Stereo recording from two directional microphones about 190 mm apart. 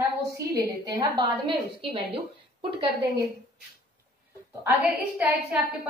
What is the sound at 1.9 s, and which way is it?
A woman's voice, 30° right (ahead or behind).